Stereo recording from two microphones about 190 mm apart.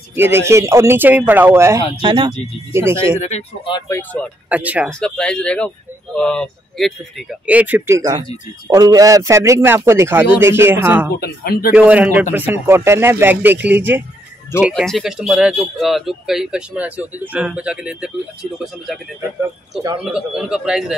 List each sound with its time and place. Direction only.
0.1 s speech: 10° right (ahead or behind)
2.0 s speech: 25° right (ahead or behind)
2.9 s speech: 15° right (ahead or behind)
3.2 s speech: 35° left (ahead or behind)
3.9 s speech: 5° left (ahead or behind)
4.5 s speech: 10° right (ahead or behind)
4.8 s speech: 5° left (ahead or behind)
11.1 s speech: 50° left (ahead or behind)
11.7 s speech: 5° right (ahead or behind)
14.6 s speech: centre (ahead or behind)
20.1 s speech: 5° right (ahead or behind)